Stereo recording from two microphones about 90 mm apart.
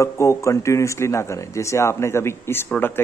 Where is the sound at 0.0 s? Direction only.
35° left (ahead or behind).